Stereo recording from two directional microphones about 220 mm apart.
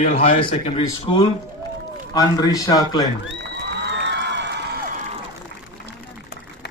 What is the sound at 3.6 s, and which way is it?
Cheering, 50° right (ahead or behind).